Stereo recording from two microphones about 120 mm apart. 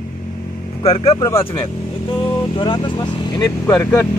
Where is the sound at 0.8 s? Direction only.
55° left (ahead or behind).